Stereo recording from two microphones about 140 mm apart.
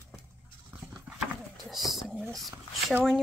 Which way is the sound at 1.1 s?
10° right (ahead or behind).